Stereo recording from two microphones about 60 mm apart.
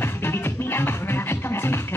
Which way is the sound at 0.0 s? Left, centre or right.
Left.